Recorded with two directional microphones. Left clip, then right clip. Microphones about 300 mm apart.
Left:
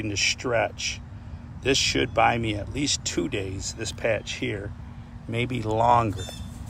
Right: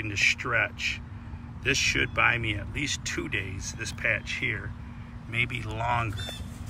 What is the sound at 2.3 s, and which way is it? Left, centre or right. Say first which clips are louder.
Speech: left 2 dB; centre.